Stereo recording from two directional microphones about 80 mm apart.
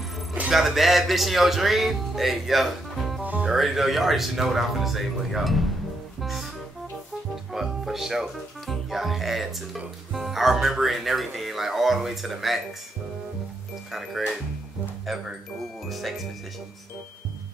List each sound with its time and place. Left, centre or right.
0.5 s speech: centre
3.3 s music: centre
3.5 s speech: centre
7.5 s speech: centre
13.9 s speech: centre
15.9 s speech: centre